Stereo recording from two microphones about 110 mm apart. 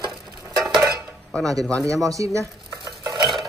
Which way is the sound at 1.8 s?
30° right (ahead or behind).